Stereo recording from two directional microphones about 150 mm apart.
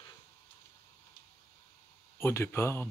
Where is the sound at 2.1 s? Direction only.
15° left (ahead or behind).